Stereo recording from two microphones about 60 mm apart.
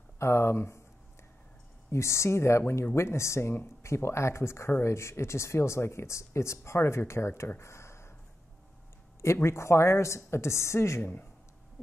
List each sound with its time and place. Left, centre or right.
0.2 s speech: left
1.9 s speech: left
7.4 s a sound: left
9.2 s speech: left
11.0 s speech: left